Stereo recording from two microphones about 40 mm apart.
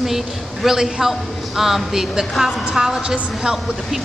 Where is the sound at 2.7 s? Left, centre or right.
Right.